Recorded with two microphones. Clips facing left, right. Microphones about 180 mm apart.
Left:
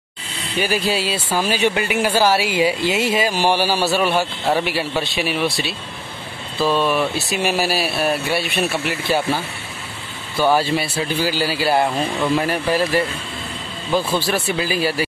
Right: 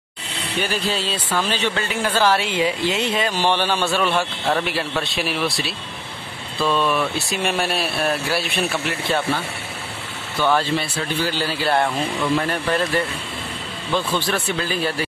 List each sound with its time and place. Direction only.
0.6 s speech: 10° left (ahead or behind)
6.9 s speech: centre (ahead or behind)
10.4 s speech: 10° left (ahead or behind)
14.1 s speech: 10° left (ahead or behind)